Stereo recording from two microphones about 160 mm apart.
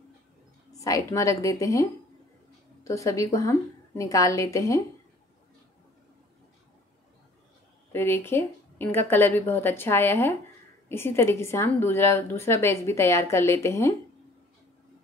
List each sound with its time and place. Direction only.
0.7 s a woman's voice: 20° left (ahead or behind)
7.9 s a woman's voice: 15° left (ahead or behind)